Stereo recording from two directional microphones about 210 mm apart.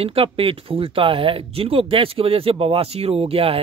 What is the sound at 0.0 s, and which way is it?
Speech, 25° right (ahead or behind).